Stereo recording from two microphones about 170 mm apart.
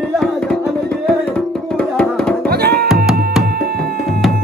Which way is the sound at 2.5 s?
65° right (ahead or behind).